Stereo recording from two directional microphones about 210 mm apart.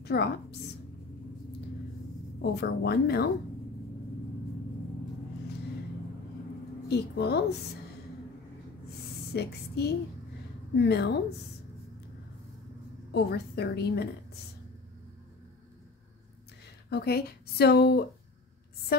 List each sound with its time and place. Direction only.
0.0 s a woman's voice: 50° left (ahead or behind)
2.5 s speech: 50° left (ahead or behind)
6.9 s speech: 50° left (ahead or behind)
9.3 s speech: 50° left (ahead or behind)
13.1 s speech: 50° left (ahead or behind)
16.9 s speech: 50° left (ahead or behind)
18.9 s a sound: 45° left (ahead or behind)